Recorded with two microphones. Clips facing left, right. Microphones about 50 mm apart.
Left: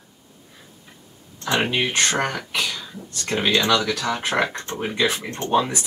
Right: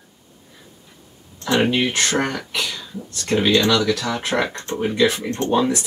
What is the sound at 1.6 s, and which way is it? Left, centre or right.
Speech, centre.